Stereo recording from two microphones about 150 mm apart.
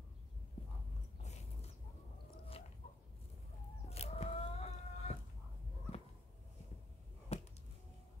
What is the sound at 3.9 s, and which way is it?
Chicken, 45° left (ahead or behind).